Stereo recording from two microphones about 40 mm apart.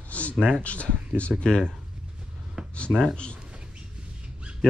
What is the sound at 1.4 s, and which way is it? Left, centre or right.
Speech, centre.